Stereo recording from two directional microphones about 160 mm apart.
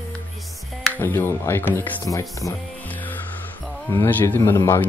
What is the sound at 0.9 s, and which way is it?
Speech, 15° left (ahead or behind).